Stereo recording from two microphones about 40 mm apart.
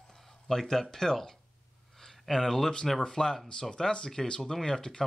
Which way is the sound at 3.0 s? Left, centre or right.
Centre.